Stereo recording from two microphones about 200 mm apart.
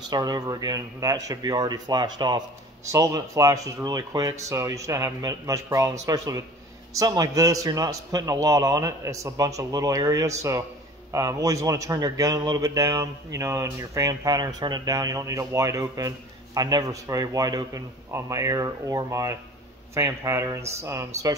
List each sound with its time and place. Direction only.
0.1 s a man's voice: 20° right (ahead or behind)